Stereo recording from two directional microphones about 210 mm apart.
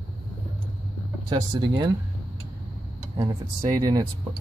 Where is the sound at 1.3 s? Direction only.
20° right (ahead or behind).